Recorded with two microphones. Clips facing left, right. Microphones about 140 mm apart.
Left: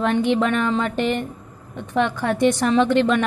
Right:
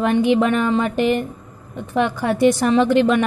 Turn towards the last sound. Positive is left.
turn(degrees=-10)  # may be behind; listen again after turning